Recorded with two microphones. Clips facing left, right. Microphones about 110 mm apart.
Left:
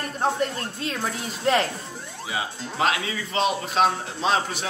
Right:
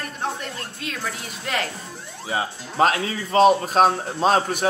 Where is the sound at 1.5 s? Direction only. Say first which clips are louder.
Left 6 dB; 30° left (ahead or behind).